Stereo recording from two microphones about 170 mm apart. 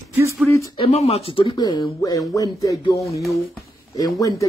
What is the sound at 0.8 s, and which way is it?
Speech, 35° left (ahead or behind).